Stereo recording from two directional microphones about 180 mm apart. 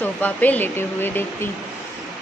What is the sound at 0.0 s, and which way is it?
A woman's voice, 10° left (ahead or behind).